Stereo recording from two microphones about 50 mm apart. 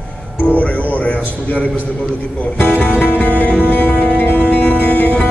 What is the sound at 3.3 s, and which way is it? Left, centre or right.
Music, left.